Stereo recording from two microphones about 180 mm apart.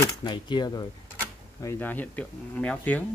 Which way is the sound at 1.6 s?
10° left (ahead or behind).